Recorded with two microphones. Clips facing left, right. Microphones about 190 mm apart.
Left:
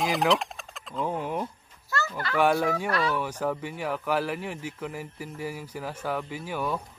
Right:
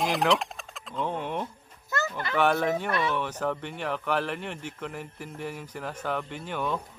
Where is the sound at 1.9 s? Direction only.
20° right (ahead or behind).